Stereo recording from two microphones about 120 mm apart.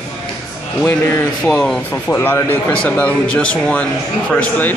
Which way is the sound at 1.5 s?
10° left (ahead or behind).